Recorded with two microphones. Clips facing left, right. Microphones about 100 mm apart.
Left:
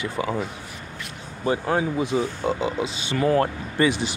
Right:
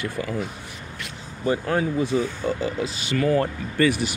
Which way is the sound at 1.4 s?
20° left (ahead or behind).